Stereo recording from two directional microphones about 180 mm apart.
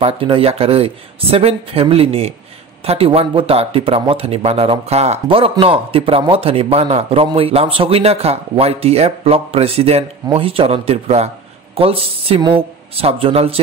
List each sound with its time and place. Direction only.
0.0 s speech: 30° right (ahead or behind)